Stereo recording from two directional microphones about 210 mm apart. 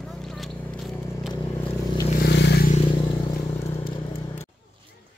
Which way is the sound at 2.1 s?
55° left (ahead or behind).